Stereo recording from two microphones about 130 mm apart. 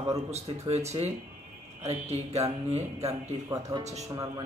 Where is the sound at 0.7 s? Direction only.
55° right (ahead or behind).